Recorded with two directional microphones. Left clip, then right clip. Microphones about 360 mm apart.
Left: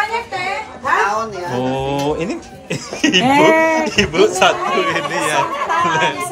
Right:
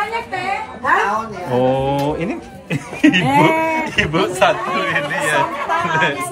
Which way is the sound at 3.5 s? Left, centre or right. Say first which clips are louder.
Left 4 dB; centre.